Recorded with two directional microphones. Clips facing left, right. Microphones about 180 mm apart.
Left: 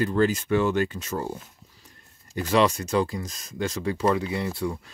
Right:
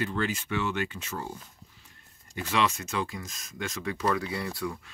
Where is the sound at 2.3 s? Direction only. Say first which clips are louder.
Left 7 dB; 40° left (ahead or behind).